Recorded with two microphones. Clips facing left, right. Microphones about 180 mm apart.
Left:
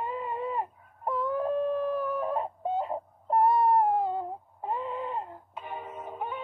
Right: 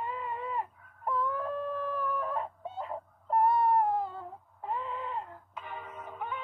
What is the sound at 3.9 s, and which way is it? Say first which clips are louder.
Music: left 6 dB; 20° left (ahead or behind).